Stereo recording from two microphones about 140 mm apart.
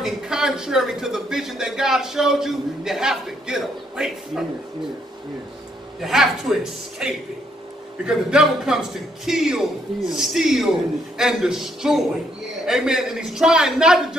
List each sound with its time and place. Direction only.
0.0 s a man's voice: 5° right (ahead or behind)
5.9 s a man's voice: centre (ahead or behind)